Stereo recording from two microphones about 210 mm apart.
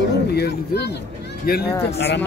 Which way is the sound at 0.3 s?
50° left (ahead or behind).